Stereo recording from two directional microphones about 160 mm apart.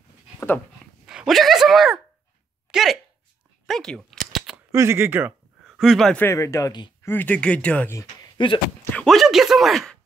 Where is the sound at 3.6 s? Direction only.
5° left (ahead or behind).